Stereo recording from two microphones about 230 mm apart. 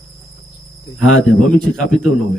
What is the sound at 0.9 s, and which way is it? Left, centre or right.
Speech, left.